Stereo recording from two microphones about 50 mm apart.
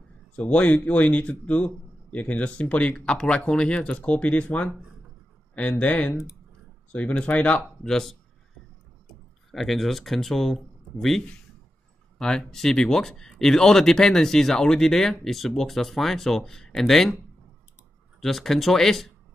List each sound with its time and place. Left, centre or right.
0.4 s a man's voice: left
5.8 s a man's voice: left
7.8 s speech: centre
9.5 s speech: centre
18.2 s speech: centre